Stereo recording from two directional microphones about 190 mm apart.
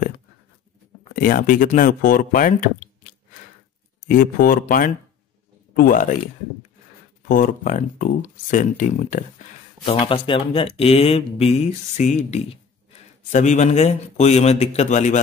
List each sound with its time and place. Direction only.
1.1 s speech: 45° left (ahead or behind)
4.1 s speech: 45° left (ahead or behind)
7.2 s speech: 45° left (ahead or behind)
9.8 s speech: 25° left (ahead or behind)